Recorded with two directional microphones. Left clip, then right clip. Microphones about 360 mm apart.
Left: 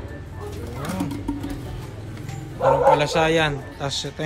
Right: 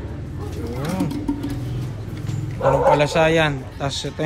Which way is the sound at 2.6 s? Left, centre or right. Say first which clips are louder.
Right 1 dB; centre.